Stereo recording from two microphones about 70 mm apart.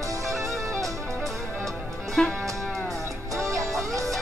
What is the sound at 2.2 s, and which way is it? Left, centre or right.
Speech, centre.